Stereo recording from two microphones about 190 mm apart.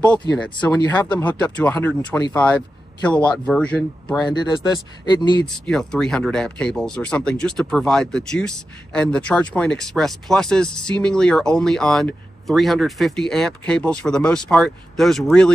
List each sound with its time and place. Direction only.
0.4 s speech: 5° left (ahead or behind)
4.2 s speech: 20° left (ahead or behind)
5.7 s speech: 5° left (ahead or behind)